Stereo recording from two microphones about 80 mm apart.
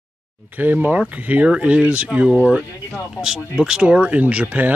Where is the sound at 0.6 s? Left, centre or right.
Right.